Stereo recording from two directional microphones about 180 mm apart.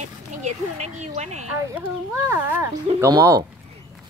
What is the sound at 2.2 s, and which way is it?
Speech, 10° right (ahead or behind).